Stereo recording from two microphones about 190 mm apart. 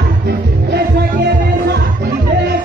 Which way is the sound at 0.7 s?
60° right (ahead or behind).